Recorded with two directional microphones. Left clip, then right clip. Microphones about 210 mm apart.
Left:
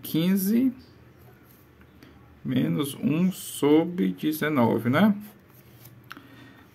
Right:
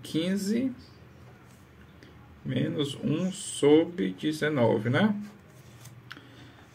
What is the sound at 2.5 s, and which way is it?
Speech, 35° left (ahead or behind).